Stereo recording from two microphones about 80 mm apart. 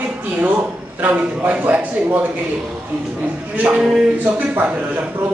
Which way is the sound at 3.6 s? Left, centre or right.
Centre.